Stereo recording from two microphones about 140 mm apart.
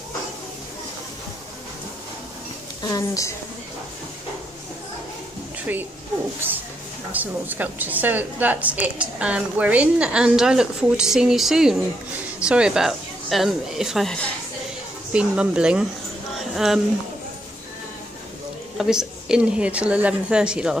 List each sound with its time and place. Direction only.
2.8 s a woman's voice: 25° left (ahead or behind)
6.4 s a woman's voice: 15° right (ahead or behind)
18.8 s a woman's voice: 5° right (ahead or behind)